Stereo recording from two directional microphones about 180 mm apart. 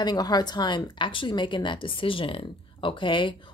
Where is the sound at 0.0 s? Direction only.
25° left (ahead or behind).